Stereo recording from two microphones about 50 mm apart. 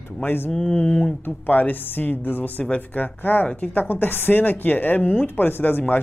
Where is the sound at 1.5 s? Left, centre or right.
Left.